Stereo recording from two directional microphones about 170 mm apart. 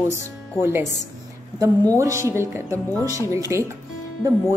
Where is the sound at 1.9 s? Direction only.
20° right (ahead or behind).